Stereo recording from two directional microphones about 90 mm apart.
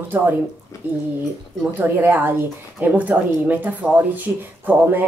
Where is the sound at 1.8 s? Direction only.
20° right (ahead or behind).